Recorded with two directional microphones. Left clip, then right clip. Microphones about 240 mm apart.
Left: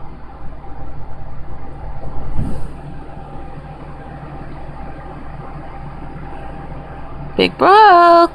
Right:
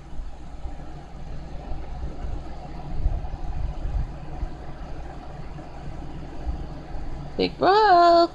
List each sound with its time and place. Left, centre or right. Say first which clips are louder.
7.3 s speech: left 10 dB; left